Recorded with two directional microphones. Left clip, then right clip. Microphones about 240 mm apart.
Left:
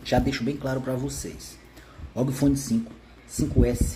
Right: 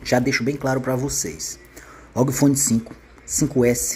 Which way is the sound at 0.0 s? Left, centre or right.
Right.